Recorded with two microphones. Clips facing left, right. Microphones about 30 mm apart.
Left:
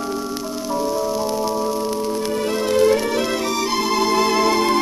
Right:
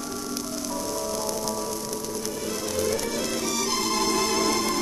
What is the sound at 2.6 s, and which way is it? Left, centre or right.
Music, left.